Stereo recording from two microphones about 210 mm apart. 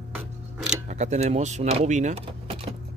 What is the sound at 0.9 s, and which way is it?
Speech, 35° right (ahead or behind).